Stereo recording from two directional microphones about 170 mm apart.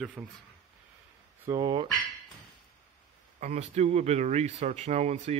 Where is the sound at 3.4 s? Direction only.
40° right (ahead or behind).